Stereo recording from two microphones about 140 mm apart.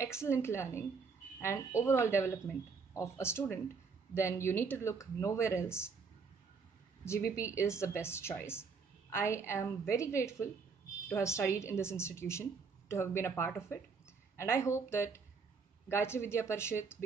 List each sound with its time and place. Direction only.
0.0 s a woman's voice: 20° left (ahead or behind)
7.1 s a woman's voice: 20° left (ahead or behind)